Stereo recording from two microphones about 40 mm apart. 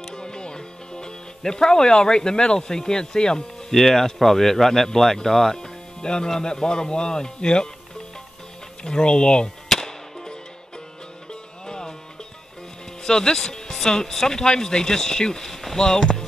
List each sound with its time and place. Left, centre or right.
0.1 s music: centre
3.7 s speech: centre
8.8 s speech: left
9.7 s music: centre
11.6 s music: centre
13.0 s speech: centre
15.8 s speech: centre